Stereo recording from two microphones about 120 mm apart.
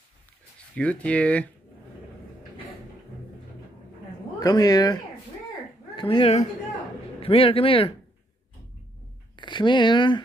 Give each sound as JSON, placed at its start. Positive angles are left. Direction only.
{"t": 0.7, "sound": "speech", "side_deg": 10}
{"t": 4.4, "sound": "speech", "side_deg": 30}
{"t": 5.9, "sound": "a man's voice", "side_deg": 45}
{"t": 9.4, "sound": "speech", "side_deg": 40}